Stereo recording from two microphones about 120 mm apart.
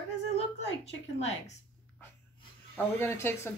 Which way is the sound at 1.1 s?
65° left (ahead or behind).